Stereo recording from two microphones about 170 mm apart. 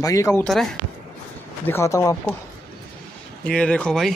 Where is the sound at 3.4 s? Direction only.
5° left (ahead or behind).